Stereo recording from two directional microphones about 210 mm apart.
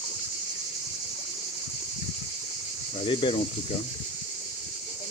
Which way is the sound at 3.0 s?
25° left (ahead or behind).